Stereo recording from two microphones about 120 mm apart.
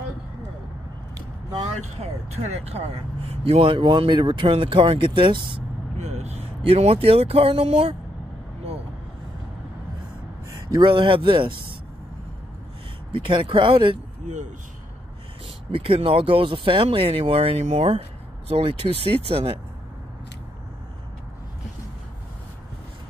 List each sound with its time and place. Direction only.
1.1 s a sound: 35° right (ahead or behind)
3.3 s speech: 55° right (ahead or behind)
5.9 s speech: 65° right (ahead or behind)
10.5 s speech: 35° right (ahead or behind)
13.1 s speech: 45° right (ahead or behind)
14.2 s speech: 90° right
15.7 s speech: 45° right (ahead or behind)